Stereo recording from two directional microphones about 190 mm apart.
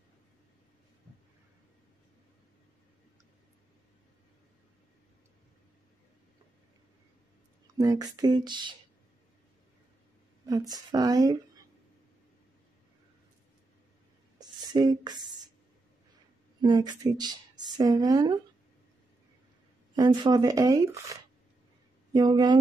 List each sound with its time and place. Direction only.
7.6 s speech: 20° right (ahead or behind)
10.4 s speech: 20° right (ahead or behind)
14.4 s a sound: 20° right (ahead or behind)
16.6 s speech: 20° right (ahead or behind)
20.0 s speech: 20° right (ahead or behind)